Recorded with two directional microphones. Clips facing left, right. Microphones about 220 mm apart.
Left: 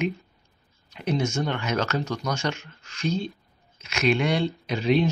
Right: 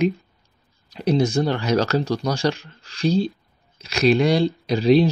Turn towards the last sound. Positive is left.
turn(degrees=-35)  # may be behind; listen again after turning